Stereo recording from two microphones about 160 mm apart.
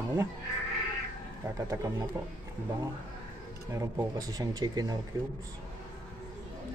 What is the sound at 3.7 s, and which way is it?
Speech, 15° right (ahead or behind).